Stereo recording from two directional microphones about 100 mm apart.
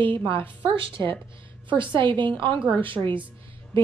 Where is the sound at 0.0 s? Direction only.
55° right (ahead or behind).